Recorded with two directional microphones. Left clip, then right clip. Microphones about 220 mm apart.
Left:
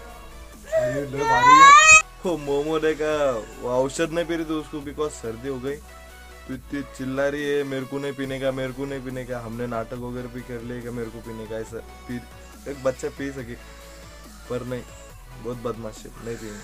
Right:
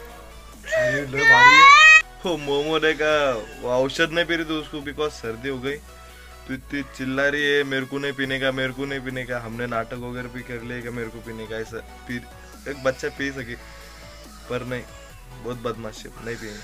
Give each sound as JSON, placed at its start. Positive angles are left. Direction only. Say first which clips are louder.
{"t": 0.7, "sound": "music", "louder": "right 2 dB", "side_deg": 25}
{"t": 2.2, "sound": "speech", "louder": "right 1 dB", "side_deg": 5}
{"t": 15.9, "sound": "speech", "louder": "right 1 dB", "side_deg": 5}